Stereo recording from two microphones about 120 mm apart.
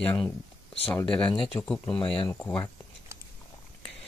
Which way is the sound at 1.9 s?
45° left (ahead or behind).